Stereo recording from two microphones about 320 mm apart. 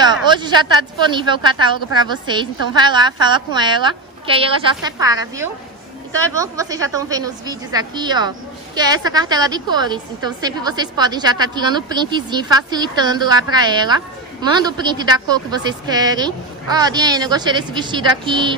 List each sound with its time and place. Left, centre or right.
0.0 s a woman's voice: centre
6.3 s a woman's voice: centre